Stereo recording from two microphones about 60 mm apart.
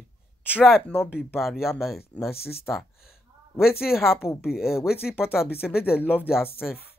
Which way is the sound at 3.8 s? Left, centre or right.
Centre.